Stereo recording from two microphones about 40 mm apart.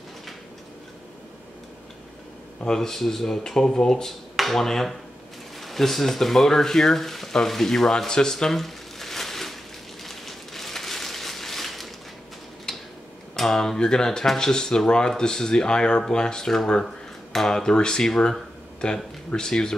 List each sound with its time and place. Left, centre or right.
2.6 s speech: centre
10.0 s a sound: centre
12.7 s tick-tock: centre
13.4 s speech: centre